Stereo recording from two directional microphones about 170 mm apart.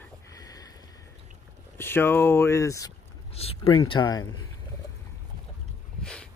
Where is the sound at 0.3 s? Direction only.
20° left (ahead or behind).